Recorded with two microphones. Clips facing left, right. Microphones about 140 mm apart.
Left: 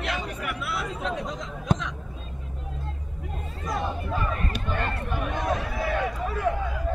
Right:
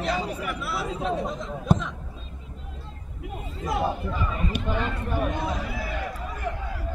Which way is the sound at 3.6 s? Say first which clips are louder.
Right 4 dB; 30° right (ahead or behind).